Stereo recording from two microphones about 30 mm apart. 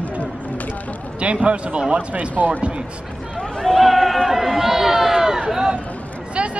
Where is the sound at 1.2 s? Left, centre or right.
Right.